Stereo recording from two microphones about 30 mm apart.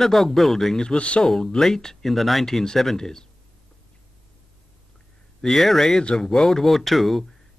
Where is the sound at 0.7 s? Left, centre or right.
Left.